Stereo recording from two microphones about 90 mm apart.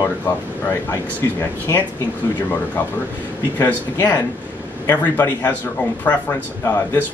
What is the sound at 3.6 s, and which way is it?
Speech, 20° left (ahead or behind).